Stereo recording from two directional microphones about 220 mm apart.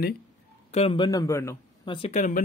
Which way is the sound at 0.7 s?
25° left (ahead or behind).